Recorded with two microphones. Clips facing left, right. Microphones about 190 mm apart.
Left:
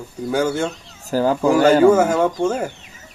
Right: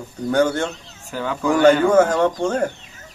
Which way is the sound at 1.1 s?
35° left (ahead or behind).